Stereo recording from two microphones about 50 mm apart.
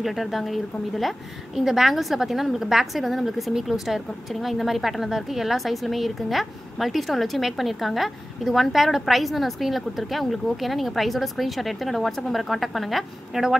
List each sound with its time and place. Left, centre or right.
0.0 s a woman's voice: centre